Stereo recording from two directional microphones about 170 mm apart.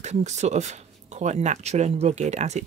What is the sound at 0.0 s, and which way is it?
Speech, 45° right (ahead or behind).